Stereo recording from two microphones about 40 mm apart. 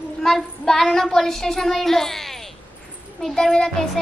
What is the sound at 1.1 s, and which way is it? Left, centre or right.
Child singing, centre.